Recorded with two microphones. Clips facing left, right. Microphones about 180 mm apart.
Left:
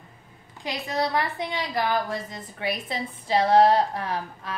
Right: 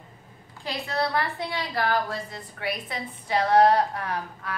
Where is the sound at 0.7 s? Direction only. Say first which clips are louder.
Left 1 dB; 15° left (ahead or behind).